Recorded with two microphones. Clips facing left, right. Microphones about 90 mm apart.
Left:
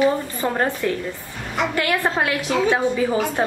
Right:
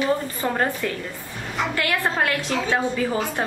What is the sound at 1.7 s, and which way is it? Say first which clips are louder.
A woman's voice: left 2 dB; 20° left (ahead or behind).